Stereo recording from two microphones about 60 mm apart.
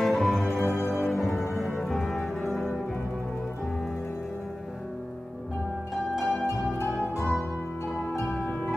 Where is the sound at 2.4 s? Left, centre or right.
Centre.